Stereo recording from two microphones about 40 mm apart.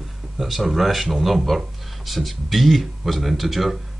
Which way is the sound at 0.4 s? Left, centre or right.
Centre.